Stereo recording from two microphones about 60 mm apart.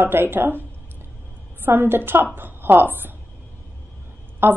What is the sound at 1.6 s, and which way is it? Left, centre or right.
A woman's voice, right.